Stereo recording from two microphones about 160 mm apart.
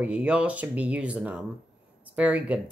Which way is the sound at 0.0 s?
10° right (ahead or behind).